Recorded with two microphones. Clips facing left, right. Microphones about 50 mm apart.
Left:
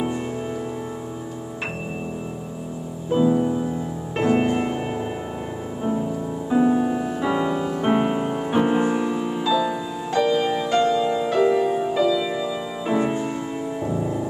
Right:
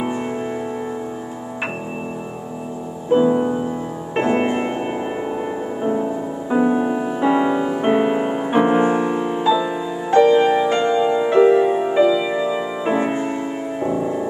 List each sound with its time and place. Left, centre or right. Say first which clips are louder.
3.1 s music: right 4 dB; right
6.5 s music: right 2 dB; right
8.2 s music: right 4 dB; right